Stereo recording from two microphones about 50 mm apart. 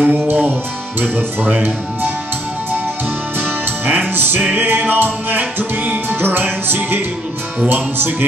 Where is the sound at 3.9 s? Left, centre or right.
Right.